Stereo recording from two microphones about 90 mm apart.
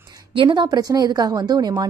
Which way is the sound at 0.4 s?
70° right (ahead or behind).